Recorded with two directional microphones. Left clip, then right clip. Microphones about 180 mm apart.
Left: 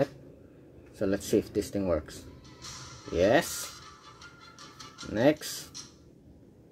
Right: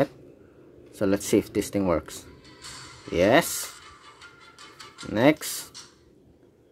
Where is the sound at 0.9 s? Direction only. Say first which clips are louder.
Right 5 dB; 35° right (ahead or behind).